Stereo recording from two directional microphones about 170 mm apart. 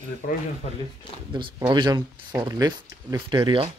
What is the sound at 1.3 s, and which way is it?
Speech, 30° right (ahead or behind).